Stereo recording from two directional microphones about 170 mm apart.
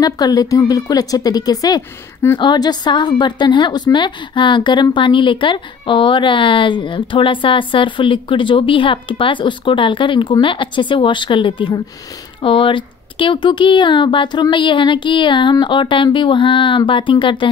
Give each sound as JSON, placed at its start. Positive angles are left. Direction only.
{"t": 0.0, "sound": "a woman's voice", "side_deg": 20}